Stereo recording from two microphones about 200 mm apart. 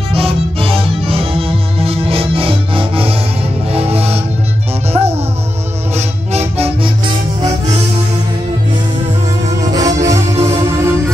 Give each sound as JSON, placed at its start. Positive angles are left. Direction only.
{"t": 0.1, "sound": "music", "side_deg": -30}
{"t": 9.7, "sound": "music", "side_deg": -15}